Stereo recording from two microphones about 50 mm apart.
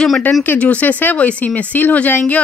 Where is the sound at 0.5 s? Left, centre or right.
Left.